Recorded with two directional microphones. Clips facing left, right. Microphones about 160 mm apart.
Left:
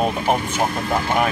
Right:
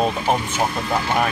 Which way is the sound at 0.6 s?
50° left (ahead or behind).